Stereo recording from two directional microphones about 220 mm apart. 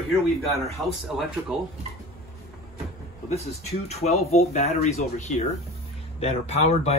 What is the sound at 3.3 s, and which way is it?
Speech, 30° left (ahead or behind).